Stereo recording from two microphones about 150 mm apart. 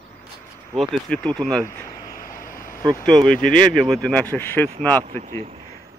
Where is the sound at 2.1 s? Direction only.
70° left (ahead or behind).